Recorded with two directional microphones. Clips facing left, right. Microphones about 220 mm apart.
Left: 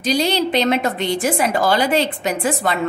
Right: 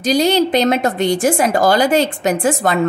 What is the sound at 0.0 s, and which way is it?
A woman's voice, 45° right (ahead or behind).